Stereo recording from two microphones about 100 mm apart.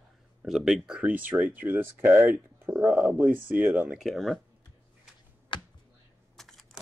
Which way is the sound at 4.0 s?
Centre (ahead or behind).